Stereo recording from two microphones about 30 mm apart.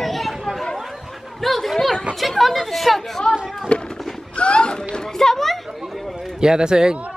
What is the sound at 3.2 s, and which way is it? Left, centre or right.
Speech, left.